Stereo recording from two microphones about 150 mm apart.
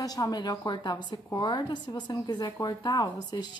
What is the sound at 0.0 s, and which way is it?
A woman's voice, 25° left (ahead or behind).